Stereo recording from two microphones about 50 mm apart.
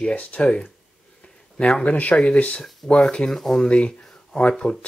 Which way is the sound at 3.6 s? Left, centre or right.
Left.